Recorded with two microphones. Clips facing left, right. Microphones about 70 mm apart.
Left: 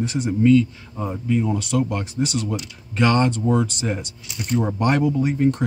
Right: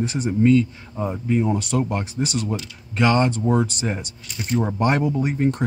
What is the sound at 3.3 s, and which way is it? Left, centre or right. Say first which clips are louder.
A man's voice: even; right.